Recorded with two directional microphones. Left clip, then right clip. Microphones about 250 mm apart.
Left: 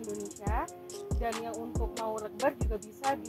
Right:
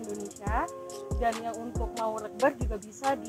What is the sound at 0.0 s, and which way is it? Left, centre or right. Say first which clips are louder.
Music: right 1 dB; centre.